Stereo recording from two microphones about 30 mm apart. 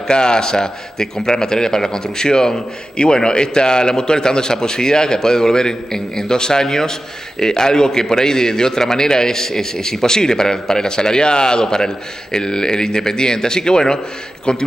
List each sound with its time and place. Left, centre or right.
0.1 s a man's voice: left